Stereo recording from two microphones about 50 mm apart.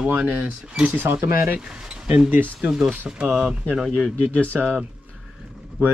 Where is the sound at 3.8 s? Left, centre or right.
Centre.